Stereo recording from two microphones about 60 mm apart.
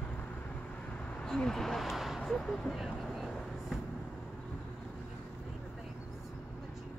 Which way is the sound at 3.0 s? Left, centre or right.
Centre.